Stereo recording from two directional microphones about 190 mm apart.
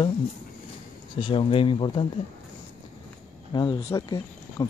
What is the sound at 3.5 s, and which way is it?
Speech, 25° left (ahead or behind).